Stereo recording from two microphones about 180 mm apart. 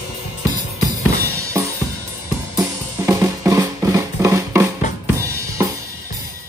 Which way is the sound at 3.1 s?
15° right (ahead or behind).